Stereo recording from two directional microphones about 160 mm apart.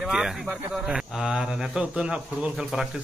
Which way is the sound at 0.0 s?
5° right (ahead or behind).